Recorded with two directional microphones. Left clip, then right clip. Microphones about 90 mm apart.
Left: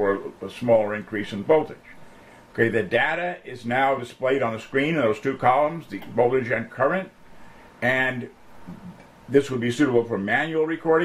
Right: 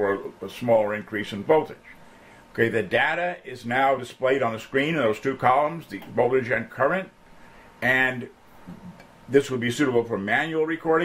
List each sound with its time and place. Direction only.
0.0 s speech: 30° right (ahead or behind)
9.3 s speech: 30° right (ahead or behind)